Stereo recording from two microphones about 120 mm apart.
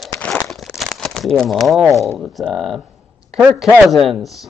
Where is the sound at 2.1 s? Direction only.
Centre (ahead or behind).